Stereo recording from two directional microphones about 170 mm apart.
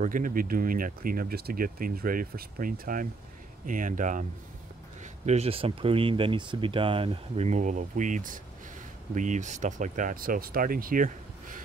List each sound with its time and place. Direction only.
0.0 s speech: 55° right (ahead or behind)